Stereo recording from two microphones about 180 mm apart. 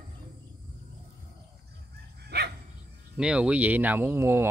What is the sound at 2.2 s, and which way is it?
Dog, 65° right (ahead or behind).